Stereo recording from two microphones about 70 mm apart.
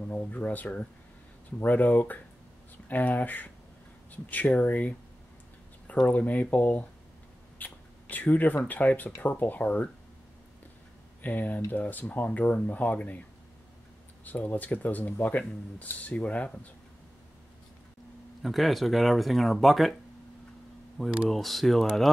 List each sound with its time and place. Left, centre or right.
0.1 s speech: left
6.0 s speech: left
7.5 s a sound: left
8.6 s speech: left
11.2 s speech: left
14.2 s speech: left
18.4 s speech: centre
21.3 s speech: centre